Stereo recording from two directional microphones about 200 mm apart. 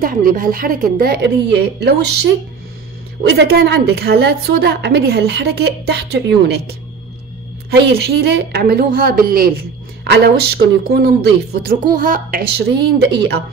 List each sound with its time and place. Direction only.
0.0 s a woman's voice: 45° right (ahead or behind)
7.7 s a woman's voice: 55° right (ahead or behind)